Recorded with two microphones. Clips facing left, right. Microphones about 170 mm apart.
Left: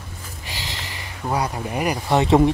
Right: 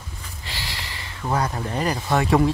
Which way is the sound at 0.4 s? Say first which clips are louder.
Left 1 dB; 15° left (ahead or behind).